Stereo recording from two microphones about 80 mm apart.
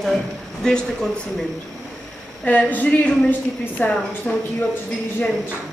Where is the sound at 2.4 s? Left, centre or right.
Centre.